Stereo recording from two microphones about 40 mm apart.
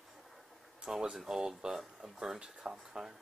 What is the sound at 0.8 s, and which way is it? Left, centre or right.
Speech, centre.